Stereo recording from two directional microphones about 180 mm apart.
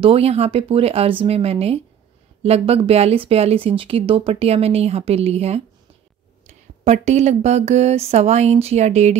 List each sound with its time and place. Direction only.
0.0 s speech: 30° right (ahead or behind)